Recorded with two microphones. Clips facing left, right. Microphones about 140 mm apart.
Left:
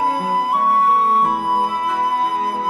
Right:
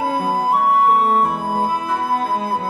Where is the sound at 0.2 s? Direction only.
Centre (ahead or behind).